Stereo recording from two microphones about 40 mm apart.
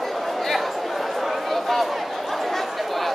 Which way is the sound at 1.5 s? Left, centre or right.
Centre.